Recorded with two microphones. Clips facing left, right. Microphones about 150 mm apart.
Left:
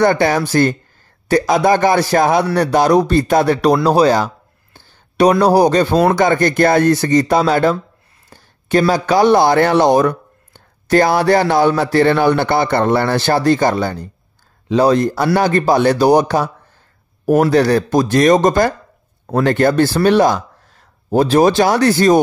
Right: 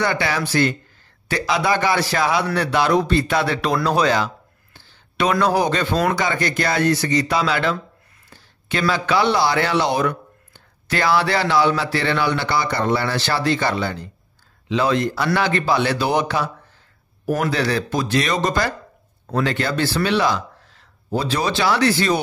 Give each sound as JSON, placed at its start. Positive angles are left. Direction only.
{"t": 0.0, "sound": "speech", "side_deg": 50}
{"t": 6.1, "sound": "speech", "side_deg": 50}
{"t": 17.5, "sound": "speech", "side_deg": 45}